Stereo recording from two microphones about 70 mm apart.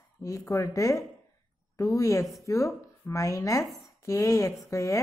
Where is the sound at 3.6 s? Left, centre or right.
Centre.